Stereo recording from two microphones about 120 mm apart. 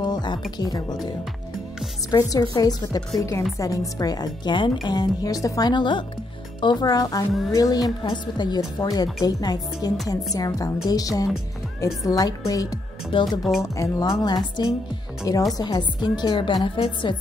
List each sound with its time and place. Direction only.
0.0 s music: 35° left (ahead or behind)
0.6 s speech: 35° left (ahead or behind)
13.6 s a woman's voice: 30° left (ahead or behind); by 17.2 s 45° left (ahead or behind)